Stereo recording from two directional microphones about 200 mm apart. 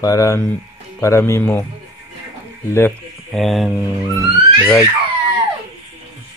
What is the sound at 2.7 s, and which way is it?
Speech, 10° left (ahead or behind).